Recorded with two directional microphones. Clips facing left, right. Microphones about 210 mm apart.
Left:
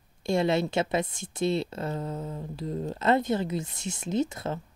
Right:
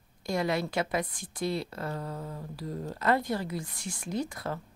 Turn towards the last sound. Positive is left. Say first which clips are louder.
# left 5 dB
turn(degrees=25)  # may be behind; listen again after turning